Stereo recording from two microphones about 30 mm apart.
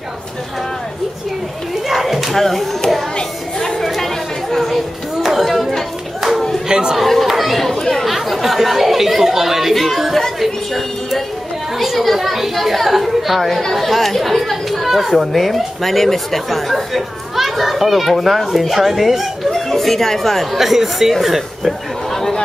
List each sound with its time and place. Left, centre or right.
1.9 s a sound: centre
2.3 s speech: centre
3.5 s chatter: centre
5.2 s a sound: centre
6.7 s chatter: right
7.0 s chatter: centre
10.4 s speech: centre
19.7 s speech: centre
20.5 s speech: centre